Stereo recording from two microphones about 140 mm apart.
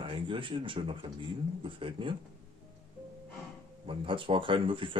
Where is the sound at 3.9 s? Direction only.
40° right (ahead or behind).